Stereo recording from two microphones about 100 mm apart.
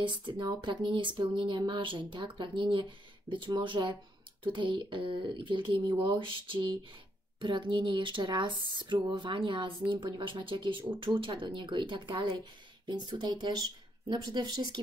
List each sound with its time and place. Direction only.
0.0 s speech: 55° right (ahead or behind)